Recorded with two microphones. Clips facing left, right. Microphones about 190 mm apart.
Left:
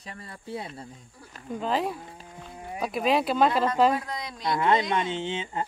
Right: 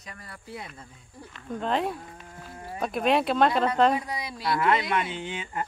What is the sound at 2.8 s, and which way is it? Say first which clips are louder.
A woman's voice: right 1 dB; centre (ahead or behind).